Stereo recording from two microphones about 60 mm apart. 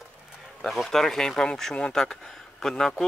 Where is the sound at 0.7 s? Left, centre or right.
Centre.